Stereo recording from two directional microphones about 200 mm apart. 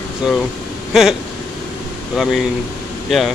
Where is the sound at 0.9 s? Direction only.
Centre (ahead or behind).